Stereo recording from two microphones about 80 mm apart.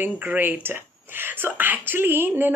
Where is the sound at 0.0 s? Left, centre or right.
Right.